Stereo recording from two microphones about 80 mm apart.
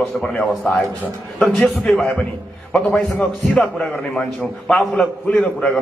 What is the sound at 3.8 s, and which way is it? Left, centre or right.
A man's voice, centre.